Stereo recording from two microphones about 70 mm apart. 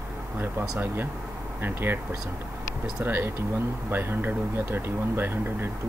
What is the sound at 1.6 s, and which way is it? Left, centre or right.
Speech, right.